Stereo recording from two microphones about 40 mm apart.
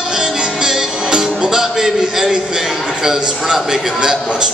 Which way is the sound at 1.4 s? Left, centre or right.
Centre.